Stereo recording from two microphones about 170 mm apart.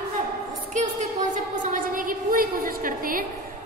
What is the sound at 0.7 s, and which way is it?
A woman's voice, 45° right (ahead or behind).